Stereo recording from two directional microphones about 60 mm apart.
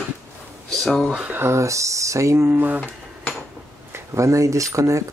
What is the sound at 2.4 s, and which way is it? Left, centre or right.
Speech, right.